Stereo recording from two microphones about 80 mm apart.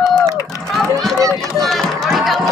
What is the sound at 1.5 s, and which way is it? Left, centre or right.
Run, centre.